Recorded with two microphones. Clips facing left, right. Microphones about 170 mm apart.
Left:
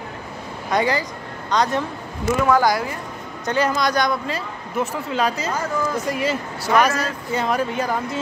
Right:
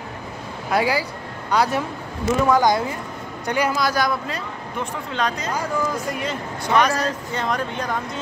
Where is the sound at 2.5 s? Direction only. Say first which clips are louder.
Even; 20° right (ahead or behind).